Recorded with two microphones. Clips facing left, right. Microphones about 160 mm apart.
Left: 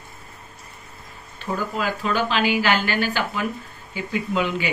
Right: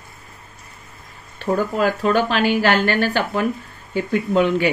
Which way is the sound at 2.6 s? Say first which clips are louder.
Right 4 dB; 55° right (ahead or behind).